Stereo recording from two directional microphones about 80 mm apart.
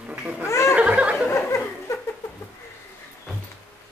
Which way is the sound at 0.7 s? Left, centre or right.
Centre.